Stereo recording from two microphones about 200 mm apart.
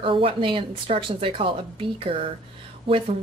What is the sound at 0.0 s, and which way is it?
Speech, 25° right (ahead or behind).